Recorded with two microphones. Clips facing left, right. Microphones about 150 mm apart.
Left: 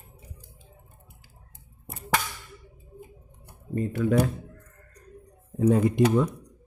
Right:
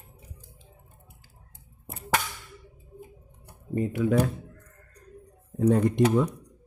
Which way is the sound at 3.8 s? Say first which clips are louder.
Right 1 dB; 20° right (ahead or behind).